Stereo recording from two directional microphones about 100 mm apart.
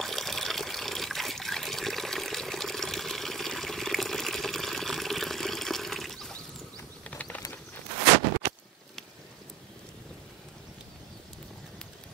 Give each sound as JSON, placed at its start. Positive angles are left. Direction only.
{"t": 0.0, "sound": "water", "side_deg": 0}
{"t": 7.1, "sound": "mechanisms", "side_deg": 15}